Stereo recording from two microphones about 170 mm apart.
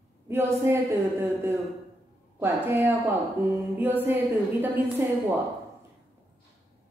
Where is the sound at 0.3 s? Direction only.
15° right (ahead or behind).